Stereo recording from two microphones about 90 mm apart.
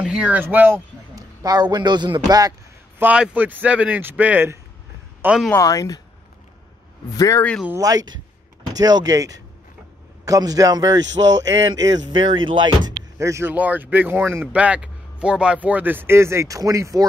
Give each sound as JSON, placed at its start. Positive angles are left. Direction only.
{"t": 0.0, "sound": "speech", "side_deg": -10}
{"t": 1.1, "sound": "a man's voice", "side_deg": -45}
{"t": 3.0, "sound": "speech", "side_deg": -15}
{"t": 5.6, "sound": "speech", "side_deg": 40}
{"t": 7.8, "sound": "speech", "side_deg": -45}
{"t": 13.2, "sound": "speech", "side_deg": -35}
{"t": 13.5, "sound": "speech", "side_deg": -20}
{"t": 14.5, "sound": "speech", "side_deg": -15}